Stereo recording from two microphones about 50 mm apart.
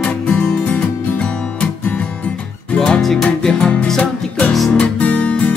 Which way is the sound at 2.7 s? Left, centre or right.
Left.